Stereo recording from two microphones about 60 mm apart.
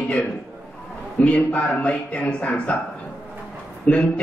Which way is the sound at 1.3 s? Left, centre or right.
Left.